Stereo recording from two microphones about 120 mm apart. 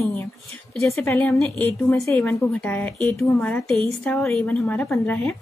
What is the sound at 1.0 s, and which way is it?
Speech, 15° left (ahead or behind).